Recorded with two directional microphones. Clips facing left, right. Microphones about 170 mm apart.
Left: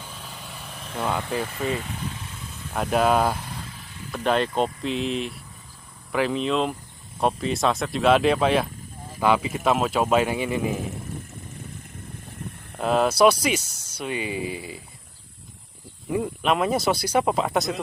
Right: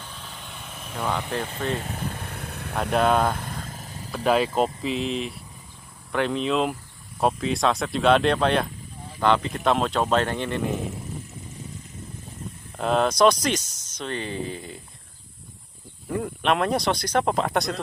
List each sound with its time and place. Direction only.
0.0 s vehicle: 5° left (ahead or behind)
0.9 s speech: 5° left (ahead or behind)
1.8 s vehicle: 45° right (ahead or behind); by 2.7 s 65° right (ahead or behind)
2.7 s speech: centre (ahead or behind)
3.3 s vehicle: 50° right (ahead or behind)
4.1 s speech: 5° right (ahead or behind)
12.7 s speech: 5° left (ahead or behind)
16.1 s speech: 5° left (ahead or behind)